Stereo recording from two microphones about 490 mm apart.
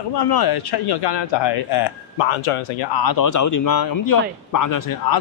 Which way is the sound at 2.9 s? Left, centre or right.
Left.